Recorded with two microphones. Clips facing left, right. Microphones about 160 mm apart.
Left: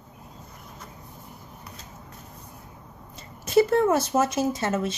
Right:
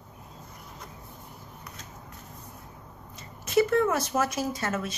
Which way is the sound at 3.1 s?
35° left (ahead or behind).